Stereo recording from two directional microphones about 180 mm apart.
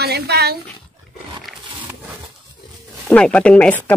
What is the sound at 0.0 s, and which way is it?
Speech, 65° right (ahead or behind).